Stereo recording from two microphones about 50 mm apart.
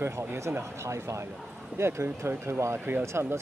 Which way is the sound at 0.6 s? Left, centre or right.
Right.